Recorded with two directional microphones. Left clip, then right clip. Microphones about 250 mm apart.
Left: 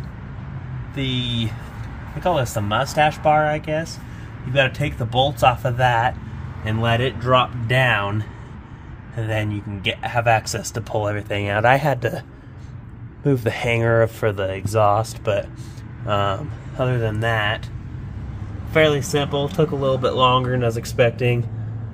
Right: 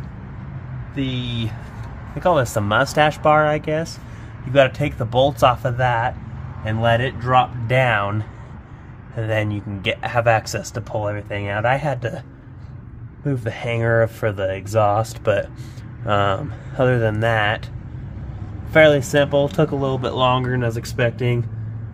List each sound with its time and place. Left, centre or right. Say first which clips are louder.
0.9 s speech: left 2 dB; centre
2.2 s speech: right 3 dB; right
5.8 s speech: left 2 dB; centre
6.6 s speech: right 2 dB; centre
10.6 s speech: left 1 dB; centre
13.2 s speech: left 5 dB; centre
18.7 s speech: right 4 dB; right